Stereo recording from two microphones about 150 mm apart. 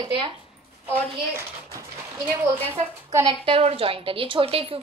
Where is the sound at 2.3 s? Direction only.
15° right (ahead or behind).